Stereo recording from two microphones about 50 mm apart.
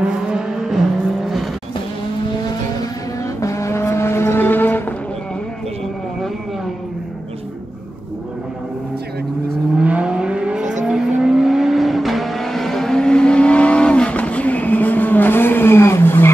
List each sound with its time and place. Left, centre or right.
0.0 s vehicle: centre
3.3 s vehicle: left
4.4 s a sound: left
9.8 s vehicle: right; by 16.3 s left